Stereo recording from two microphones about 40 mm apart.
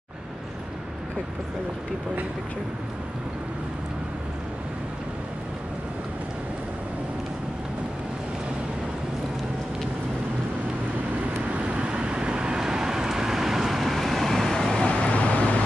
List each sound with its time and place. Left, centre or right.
11.8 s vehicle: right; by 14.9 s centre
14.9 s vehicle: left